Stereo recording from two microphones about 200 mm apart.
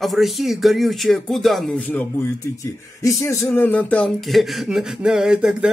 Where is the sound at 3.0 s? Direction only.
15° left (ahead or behind).